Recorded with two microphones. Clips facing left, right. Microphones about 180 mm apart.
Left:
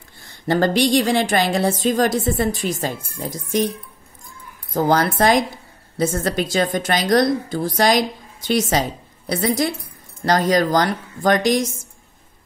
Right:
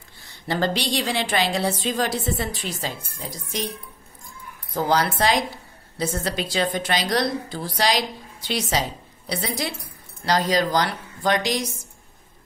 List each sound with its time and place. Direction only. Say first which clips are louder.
0.5 s a woman's voice: left 7 dB; 50° left (ahead or behind)
4.7 s a woman's voice: left 4 dB; 50° left (ahead or behind)